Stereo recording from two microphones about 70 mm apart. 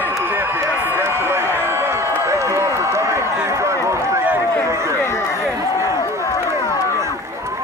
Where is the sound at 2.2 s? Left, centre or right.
Right.